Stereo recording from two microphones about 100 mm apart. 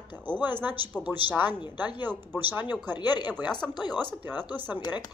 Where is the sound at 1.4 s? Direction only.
45° left (ahead or behind).